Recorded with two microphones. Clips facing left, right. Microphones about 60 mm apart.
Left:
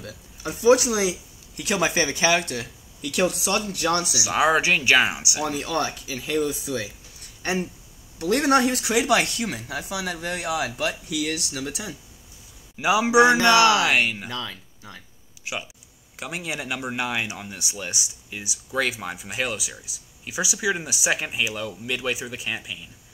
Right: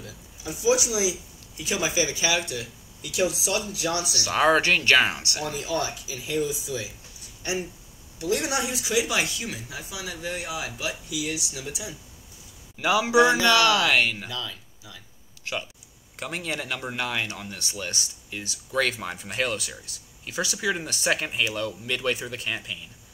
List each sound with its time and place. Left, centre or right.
0.0 s speech: left
4.2 s speech: centre
5.4 s speech: left
7.4 s speech: left
12.7 s speech: centre
13.1 s speech: left
14.3 s speech: left
15.5 s speech: centre